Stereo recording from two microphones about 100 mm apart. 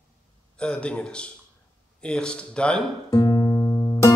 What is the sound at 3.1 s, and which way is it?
Music, 35° left (ahead or behind).